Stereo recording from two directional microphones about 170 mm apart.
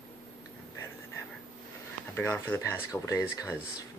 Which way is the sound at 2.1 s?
15° left (ahead or behind).